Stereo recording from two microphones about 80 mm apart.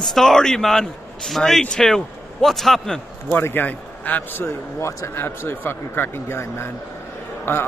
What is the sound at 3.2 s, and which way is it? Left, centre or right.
A man's voice, left.